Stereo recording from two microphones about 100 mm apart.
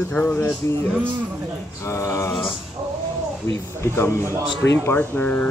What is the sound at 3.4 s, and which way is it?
Speech, 25° left (ahead or behind).